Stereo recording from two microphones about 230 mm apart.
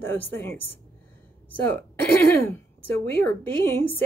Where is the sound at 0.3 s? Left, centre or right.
Centre.